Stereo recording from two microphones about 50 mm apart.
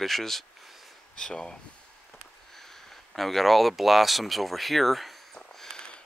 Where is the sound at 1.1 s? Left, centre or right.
Centre.